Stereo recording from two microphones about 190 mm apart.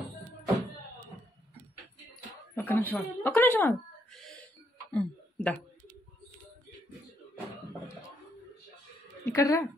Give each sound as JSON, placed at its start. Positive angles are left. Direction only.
{"t": 2.5, "sound": "a woman's voice", "side_deg": 10}
{"t": 4.9, "sound": "a sound", "side_deg": 5}
{"t": 9.2, "sound": "speech", "side_deg": 15}